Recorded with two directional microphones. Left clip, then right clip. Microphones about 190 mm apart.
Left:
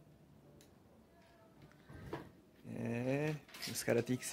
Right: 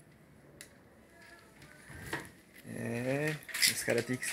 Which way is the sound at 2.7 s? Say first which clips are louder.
Right 4 dB; 20° left (ahead or behind).